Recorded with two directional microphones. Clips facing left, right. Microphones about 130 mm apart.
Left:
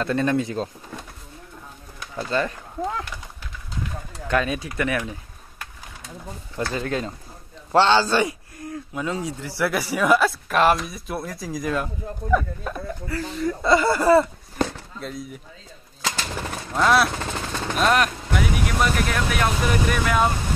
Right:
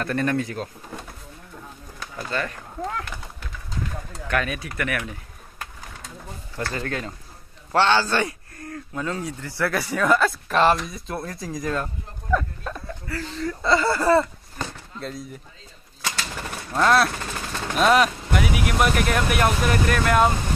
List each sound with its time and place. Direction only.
0.0 s speech: 20° left (ahead or behind)
2.1 s speech: 25° left (ahead or behind)
4.3 s speech: 20° left (ahead or behind)
6.7 s speech: 20° left (ahead or behind)
13.1 s speech: 15° left (ahead or behind)
16.7 s speech: 5° left (ahead or behind)